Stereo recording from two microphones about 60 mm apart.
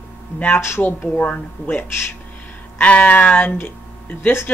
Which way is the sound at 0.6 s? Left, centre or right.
Left.